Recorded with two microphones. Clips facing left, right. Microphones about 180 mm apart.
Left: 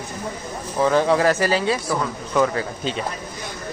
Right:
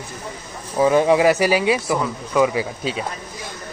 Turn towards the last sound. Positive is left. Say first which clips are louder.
# right 2 dB
turn(degrees=-10)  # may be behind; listen again after turning